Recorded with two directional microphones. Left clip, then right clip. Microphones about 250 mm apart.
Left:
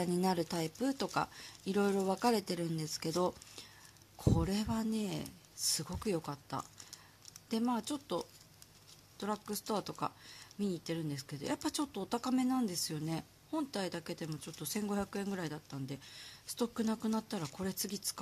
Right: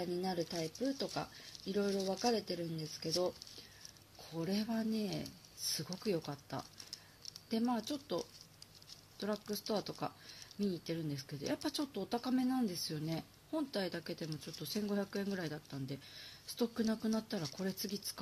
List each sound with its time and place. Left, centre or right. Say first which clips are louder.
0.0 s speech: left 4 dB; left
4.4 s speech: left 2 dB; centre